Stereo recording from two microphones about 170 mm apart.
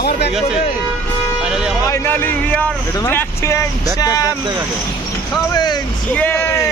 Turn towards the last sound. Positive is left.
turn(degrees=10)  # may be behind; listen again after turning